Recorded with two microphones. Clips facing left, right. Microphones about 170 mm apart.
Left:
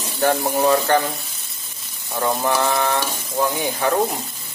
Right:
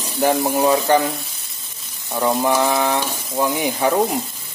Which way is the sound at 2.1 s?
15° right (ahead or behind).